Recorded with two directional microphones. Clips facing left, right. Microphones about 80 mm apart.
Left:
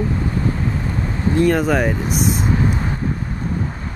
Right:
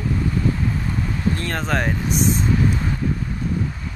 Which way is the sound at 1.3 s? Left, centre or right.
Centre.